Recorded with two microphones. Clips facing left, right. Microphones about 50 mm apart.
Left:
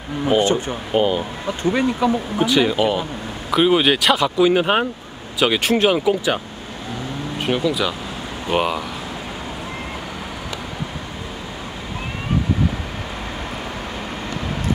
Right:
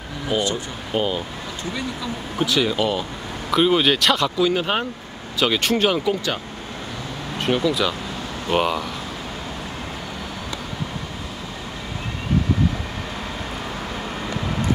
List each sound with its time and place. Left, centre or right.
0.3 s speech: left
0.9 s speech: centre
1.6 s speech: left
2.3 s speech: centre
4.5 s speech: centre